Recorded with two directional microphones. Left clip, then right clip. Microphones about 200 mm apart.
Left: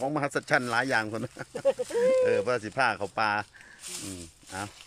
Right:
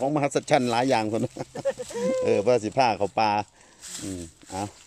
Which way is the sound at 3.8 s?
10° left (ahead or behind).